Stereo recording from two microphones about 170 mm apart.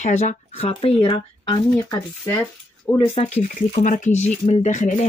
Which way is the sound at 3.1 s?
40° left (ahead or behind).